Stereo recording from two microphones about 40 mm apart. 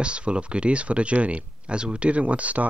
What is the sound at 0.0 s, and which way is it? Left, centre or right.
Speech, right.